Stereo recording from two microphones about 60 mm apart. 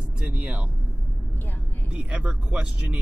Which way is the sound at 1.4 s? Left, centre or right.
Left.